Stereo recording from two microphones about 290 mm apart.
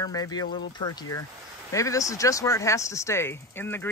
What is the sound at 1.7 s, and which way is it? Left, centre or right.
Speech, centre.